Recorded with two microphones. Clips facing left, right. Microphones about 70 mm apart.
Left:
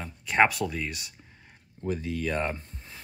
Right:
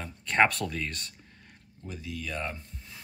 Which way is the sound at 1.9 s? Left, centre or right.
Left.